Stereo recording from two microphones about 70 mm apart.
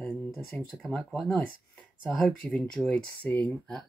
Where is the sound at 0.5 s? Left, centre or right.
Centre.